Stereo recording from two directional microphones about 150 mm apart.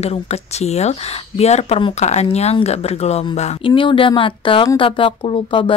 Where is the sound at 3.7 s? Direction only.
35° left (ahead or behind).